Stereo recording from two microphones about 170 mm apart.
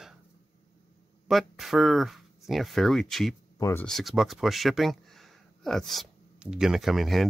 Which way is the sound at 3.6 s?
15° left (ahead or behind).